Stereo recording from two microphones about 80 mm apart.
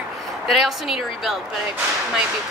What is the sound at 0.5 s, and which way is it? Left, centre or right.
Speech, centre.